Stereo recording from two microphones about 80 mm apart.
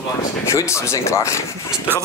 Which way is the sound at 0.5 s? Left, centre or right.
Left.